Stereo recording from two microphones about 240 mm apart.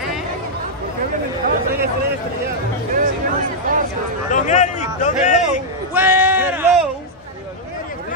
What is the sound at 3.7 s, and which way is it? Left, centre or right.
Speech, right.